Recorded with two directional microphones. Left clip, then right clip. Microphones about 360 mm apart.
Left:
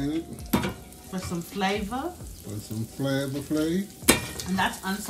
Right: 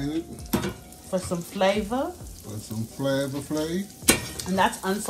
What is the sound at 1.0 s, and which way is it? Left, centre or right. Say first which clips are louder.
Speech: right 7 dB; centre.